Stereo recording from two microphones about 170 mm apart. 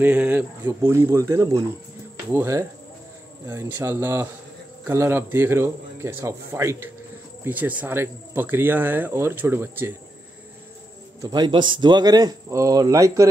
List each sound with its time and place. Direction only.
0.0 s speech: 10° right (ahead or behind)
11.1 s speech: 25° right (ahead or behind)